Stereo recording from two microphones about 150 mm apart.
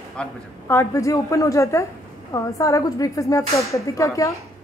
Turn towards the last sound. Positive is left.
turn(degrees=20)  # may be behind; listen again after turning